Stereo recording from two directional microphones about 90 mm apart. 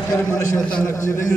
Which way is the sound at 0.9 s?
30° left (ahead or behind).